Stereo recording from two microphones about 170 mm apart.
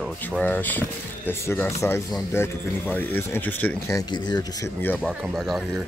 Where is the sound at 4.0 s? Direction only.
25° left (ahead or behind).